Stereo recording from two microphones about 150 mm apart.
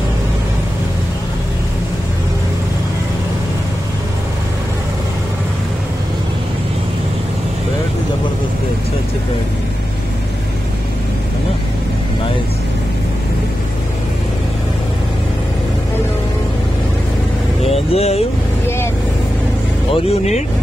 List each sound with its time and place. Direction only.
17.6 s vehicle: 45° left (ahead or behind)
19.9 s vehicle: 45° left (ahead or behind)